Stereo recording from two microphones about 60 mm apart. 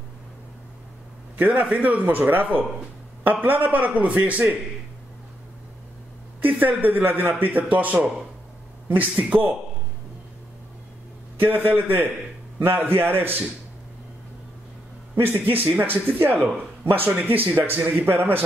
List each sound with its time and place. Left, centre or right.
1.4 s a man's voice: right
6.4 s a man's voice: right
11.4 s speech: right
15.1 s speech: right
18.1 s a man's voice: right